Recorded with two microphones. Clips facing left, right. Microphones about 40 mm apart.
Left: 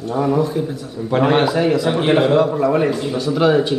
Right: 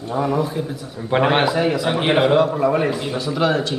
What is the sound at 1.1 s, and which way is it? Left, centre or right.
Speech, right.